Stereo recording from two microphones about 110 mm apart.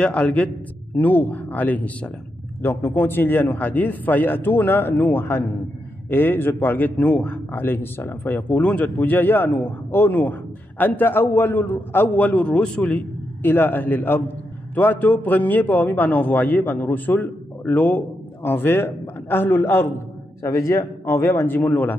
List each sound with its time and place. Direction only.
0.0 s a man's voice: 10° left (ahead or behind)